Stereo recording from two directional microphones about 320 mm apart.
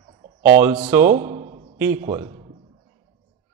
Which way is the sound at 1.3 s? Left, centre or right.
Centre.